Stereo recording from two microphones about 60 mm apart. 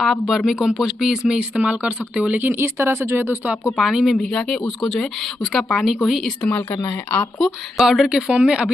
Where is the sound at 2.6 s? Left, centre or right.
Right.